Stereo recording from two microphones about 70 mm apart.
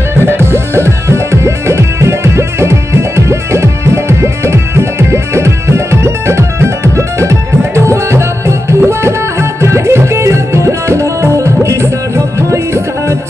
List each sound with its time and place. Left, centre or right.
0.2 s music: right